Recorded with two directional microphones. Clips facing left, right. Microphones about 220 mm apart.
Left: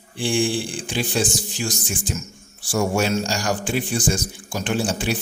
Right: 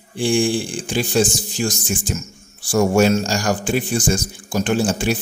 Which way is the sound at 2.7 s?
45° right (ahead or behind).